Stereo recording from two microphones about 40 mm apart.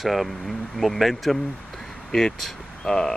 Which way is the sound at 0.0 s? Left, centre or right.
Centre.